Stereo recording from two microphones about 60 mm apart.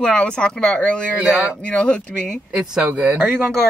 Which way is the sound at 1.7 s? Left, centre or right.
Centre.